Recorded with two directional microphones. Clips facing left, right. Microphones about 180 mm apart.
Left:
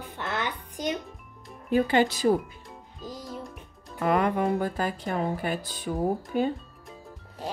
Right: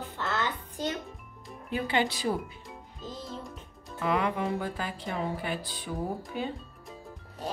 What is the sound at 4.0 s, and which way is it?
Speech, 50° left (ahead or behind).